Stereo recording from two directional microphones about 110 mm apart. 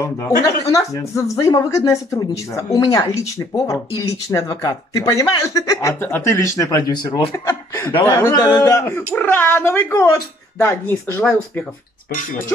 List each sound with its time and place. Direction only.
0.0 s speech: 30° left (ahead or behind)
7.3 s chuckle: 25° left (ahead or behind)
8.0 s speech: 20° left (ahead or behind)
8.3 s speech: 35° left (ahead or behind)
8.7 s speech: 20° left (ahead or behind)